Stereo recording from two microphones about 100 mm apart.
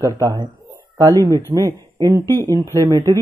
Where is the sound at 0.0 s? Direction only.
40° right (ahead or behind).